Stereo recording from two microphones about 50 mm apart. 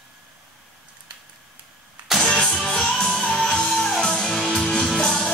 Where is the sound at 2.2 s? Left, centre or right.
Centre.